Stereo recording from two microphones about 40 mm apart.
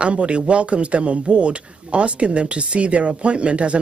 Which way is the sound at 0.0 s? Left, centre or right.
Right.